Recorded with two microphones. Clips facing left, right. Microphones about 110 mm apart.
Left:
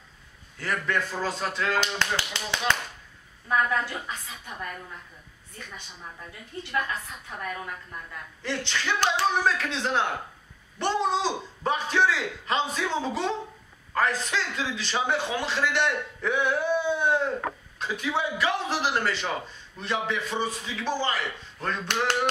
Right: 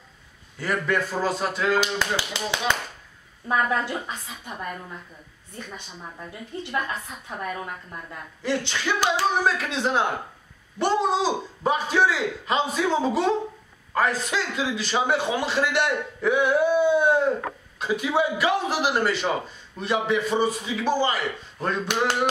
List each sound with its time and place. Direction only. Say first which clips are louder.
0.6 s a man's voice: right 4 dB; 5° right (ahead or behind)
3.4 s a woman's voice: right 2 dB; 25° right (ahead or behind)
7.2 s a woman's voice: right 4 dB; 20° right (ahead or behind)
8.4 s a man's voice: right 4 dB; 10° right (ahead or behind)